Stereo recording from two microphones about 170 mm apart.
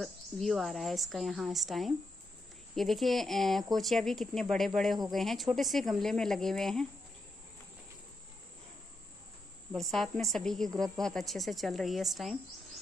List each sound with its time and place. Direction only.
0.0 s a woman's voice: centre (ahead or behind)
9.7 s a woman's voice: centre (ahead or behind)